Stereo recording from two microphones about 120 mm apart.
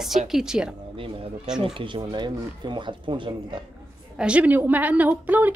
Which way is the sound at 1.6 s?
45° right (ahead or behind).